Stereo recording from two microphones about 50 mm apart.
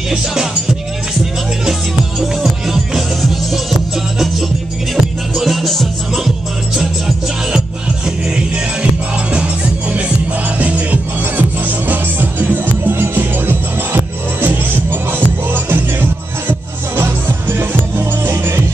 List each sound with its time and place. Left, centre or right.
0.1 s music: centre
5.3 s music: centre
10.6 s music: right